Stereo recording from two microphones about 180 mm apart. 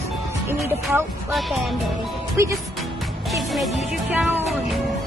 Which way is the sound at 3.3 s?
Centre (ahead or behind).